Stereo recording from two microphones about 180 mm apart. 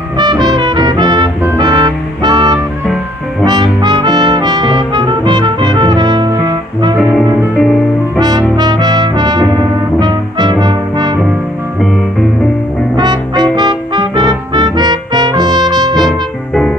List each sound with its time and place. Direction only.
0.2 s brass instrument: 25° right (ahead or behind)
8.2 s brass instrument: 20° right (ahead or behind)
12.9 s brass instrument: 25° right (ahead or behind)
16.1 s music: 5° left (ahead or behind)